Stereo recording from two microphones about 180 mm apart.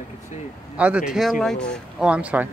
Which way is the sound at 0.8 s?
5° right (ahead or behind).